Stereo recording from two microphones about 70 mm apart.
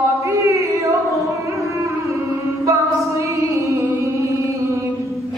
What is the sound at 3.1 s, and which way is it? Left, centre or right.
Music, right.